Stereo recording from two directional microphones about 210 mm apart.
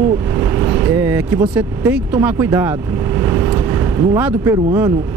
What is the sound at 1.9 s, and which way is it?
Speech, 10° right (ahead or behind).